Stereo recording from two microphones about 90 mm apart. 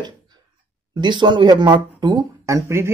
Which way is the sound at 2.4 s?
35° right (ahead or behind).